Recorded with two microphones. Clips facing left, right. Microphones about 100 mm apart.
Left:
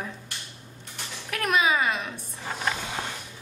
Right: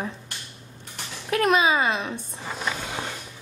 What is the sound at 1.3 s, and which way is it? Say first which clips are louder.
Speech: right 4 dB; 30° right (ahead or behind).